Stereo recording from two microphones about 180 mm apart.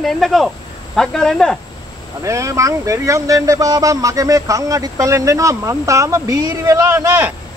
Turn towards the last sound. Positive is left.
turn(degrees=-15)  # may be behind; listen again after turning